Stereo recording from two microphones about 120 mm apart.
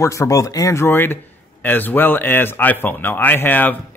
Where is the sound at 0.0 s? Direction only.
25° left (ahead or behind).